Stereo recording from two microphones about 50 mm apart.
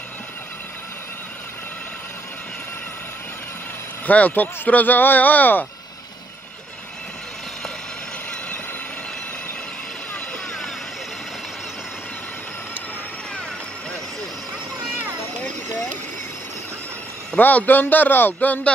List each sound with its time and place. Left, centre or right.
4.0 s speech: left
17.4 s speech: left